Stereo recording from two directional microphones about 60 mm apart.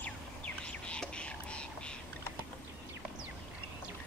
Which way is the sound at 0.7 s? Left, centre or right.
Centre.